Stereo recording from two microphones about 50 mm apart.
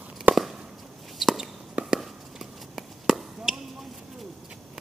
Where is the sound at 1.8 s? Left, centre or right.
Right.